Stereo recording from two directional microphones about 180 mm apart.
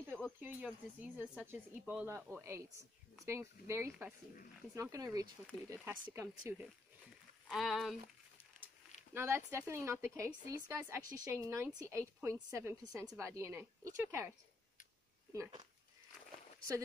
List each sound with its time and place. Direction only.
0.4 s a woman's voice: 10° right (ahead or behind)
7.4 s speech: centre (ahead or behind)
9.1 s a woman's voice: 15° right (ahead or behind)